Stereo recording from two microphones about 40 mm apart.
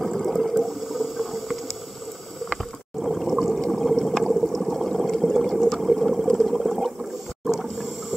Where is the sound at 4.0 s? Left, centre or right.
Centre.